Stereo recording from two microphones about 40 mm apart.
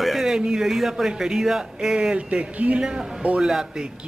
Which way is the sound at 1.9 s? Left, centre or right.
Right.